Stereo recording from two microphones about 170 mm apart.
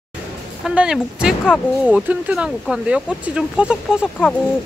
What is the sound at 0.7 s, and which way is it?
Speech, 5° right (ahead or behind).